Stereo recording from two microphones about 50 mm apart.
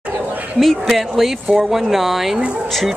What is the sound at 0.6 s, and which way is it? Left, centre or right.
Speech, centre.